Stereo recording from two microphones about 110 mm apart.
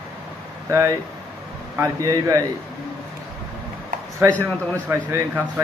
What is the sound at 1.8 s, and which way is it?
Speech, 30° right (ahead or behind).